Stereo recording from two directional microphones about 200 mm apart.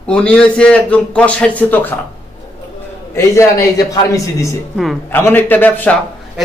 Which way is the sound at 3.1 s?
15° left (ahead or behind).